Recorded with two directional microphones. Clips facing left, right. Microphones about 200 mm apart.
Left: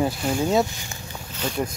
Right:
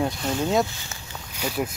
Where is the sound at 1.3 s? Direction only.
10° right (ahead or behind).